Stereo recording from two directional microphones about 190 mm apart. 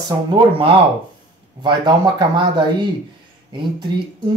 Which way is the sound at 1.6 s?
25° right (ahead or behind).